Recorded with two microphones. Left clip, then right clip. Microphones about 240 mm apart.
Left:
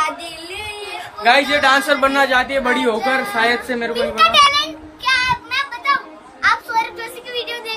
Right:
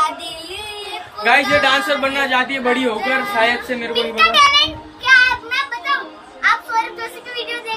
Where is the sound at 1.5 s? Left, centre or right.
Centre.